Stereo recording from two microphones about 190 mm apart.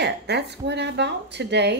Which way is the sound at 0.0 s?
60° right (ahead or behind).